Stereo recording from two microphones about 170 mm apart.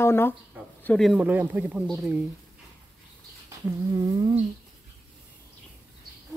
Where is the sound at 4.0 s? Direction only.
25° right (ahead or behind).